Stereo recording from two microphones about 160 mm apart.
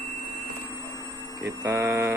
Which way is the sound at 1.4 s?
15° right (ahead or behind).